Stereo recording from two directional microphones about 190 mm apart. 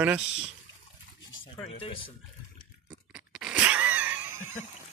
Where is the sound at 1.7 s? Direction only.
30° left (ahead or behind).